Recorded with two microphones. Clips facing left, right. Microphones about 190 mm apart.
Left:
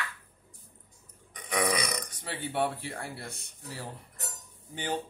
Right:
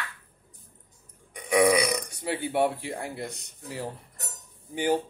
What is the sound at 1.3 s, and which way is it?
A man's voice, 10° right (ahead or behind).